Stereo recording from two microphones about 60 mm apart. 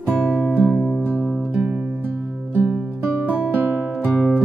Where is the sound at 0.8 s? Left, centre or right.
Centre.